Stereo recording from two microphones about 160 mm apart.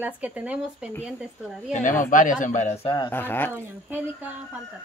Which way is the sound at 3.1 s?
15° left (ahead or behind).